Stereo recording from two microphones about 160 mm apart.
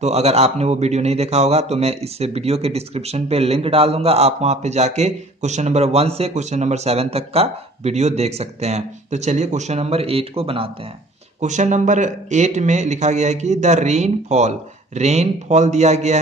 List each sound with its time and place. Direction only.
0.0 s a man's voice: 40° right (ahead or behind)
11.4 s a man's voice: 50° right (ahead or behind)